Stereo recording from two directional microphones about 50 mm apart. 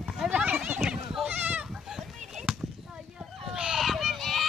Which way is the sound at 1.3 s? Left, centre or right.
Right.